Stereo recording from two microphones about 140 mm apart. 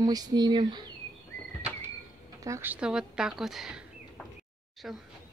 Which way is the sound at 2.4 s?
20° right (ahead or behind).